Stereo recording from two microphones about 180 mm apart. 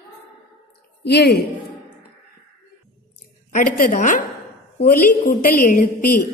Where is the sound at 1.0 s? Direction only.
65° left (ahead or behind).